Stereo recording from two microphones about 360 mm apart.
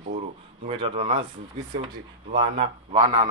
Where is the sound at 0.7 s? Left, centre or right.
Centre.